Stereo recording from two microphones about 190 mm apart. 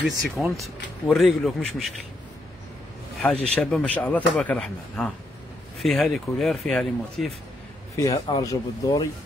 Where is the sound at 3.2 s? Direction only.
10° left (ahead or behind).